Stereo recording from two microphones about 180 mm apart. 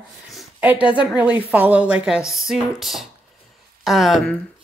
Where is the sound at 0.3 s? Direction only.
5° right (ahead or behind).